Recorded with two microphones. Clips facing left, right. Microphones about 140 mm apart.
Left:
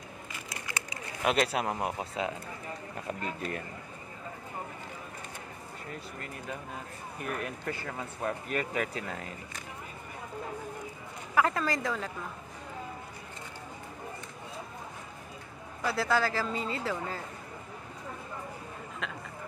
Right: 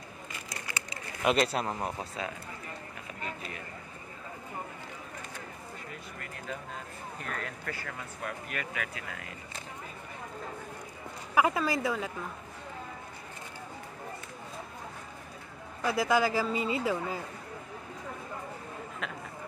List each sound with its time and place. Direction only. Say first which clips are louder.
1.2 s speech: right 1 dB; centre (ahead or behind); by 2.3 s 20° left (ahead or behind)
3.1 s speech: left 6 dB; 50° left (ahead or behind)
7.2 s speech: left 4 dB; 15° left (ahead or behind); by 9.3 s 30° left (ahead or behind)
11.3 s a woman's voice: right 1 dB; 10° right (ahead or behind)
15.8 s a woman's voice: right 2 dB; 15° right (ahead or behind)
19.0 s a sound: left 1 dB; 5° right (ahead or behind)